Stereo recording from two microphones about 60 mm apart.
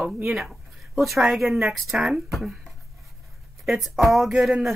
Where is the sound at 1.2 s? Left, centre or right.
Centre.